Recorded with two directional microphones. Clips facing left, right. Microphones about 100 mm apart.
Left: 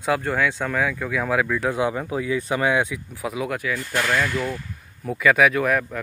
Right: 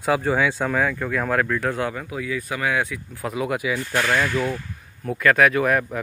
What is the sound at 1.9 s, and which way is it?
Speech, 30° left (ahead or behind).